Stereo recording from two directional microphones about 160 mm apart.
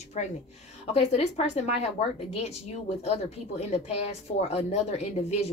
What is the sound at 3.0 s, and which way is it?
Speech, 40° left (ahead or behind).